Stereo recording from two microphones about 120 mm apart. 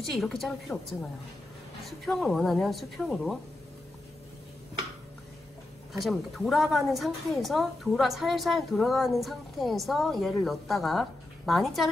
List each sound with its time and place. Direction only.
0.1 s a woman's voice: centre (ahead or behind)
5.9 s a woman's voice: centre (ahead or behind)